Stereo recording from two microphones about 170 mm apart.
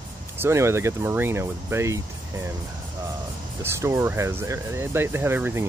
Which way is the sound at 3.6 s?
15° right (ahead or behind).